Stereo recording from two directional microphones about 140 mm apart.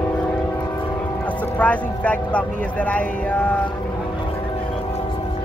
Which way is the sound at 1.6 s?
10° left (ahead or behind).